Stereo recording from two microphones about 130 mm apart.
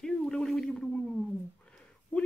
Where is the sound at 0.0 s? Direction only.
5° left (ahead or behind).